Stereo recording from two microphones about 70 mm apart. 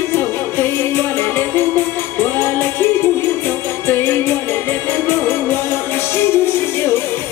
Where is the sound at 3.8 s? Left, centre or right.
Left.